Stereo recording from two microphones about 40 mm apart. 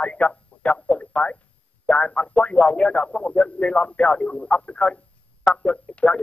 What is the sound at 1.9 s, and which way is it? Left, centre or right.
Speech, left.